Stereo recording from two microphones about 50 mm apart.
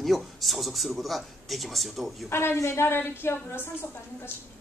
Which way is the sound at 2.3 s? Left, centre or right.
Left.